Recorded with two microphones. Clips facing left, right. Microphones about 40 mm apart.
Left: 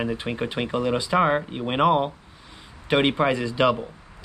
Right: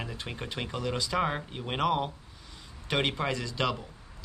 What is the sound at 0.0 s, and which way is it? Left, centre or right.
Speech, left.